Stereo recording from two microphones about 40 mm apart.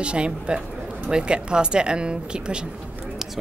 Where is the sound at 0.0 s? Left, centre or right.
Right.